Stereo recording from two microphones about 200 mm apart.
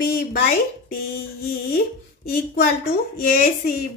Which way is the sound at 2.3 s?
50° left (ahead or behind).